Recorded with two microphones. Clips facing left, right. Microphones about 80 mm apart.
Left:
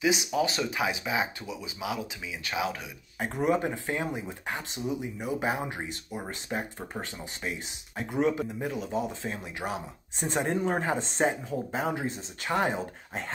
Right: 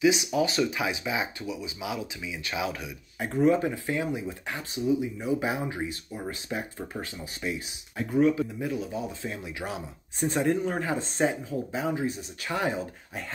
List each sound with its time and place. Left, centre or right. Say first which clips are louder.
0.0 s speech: right 3 dB; left
4.8 s speech: right 6 dB; left
5.4 s speech: even; left
5.8 s speech: right 2 dB; left
11.7 s speech: right 2 dB; left